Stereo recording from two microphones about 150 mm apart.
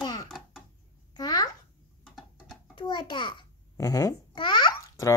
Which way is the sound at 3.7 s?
25° left (ahead or behind).